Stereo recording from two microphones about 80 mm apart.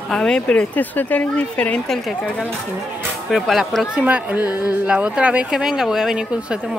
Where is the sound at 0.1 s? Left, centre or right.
Centre.